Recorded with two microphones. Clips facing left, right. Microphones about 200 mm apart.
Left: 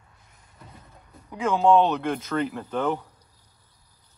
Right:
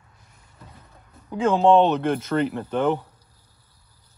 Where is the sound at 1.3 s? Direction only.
30° right (ahead or behind).